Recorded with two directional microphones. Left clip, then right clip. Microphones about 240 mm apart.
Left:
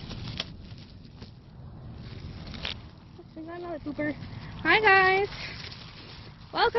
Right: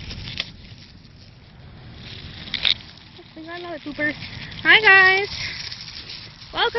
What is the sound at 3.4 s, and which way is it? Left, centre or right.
Speech, centre.